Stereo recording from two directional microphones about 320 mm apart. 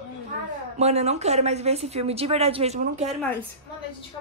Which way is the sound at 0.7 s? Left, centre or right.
Centre.